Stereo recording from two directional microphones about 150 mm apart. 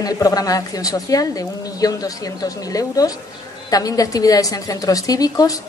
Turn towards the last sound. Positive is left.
turn(degrees=25)  # may be behind; listen again after turning